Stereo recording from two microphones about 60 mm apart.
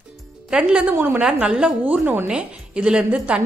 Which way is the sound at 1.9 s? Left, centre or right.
Right.